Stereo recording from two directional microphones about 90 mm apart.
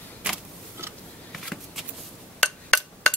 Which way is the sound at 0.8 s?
25° right (ahead or behind).